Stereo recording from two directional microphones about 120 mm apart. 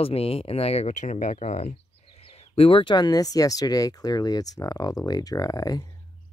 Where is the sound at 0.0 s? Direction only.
55° left (ahead or behind); by 1.8 s 85° left.